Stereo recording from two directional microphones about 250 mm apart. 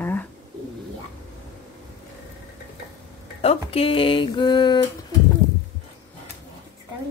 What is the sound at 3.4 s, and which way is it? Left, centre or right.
Speech, left.